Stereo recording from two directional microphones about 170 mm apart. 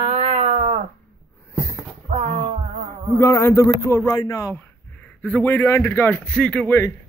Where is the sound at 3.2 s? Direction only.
15° left (ahead or behind).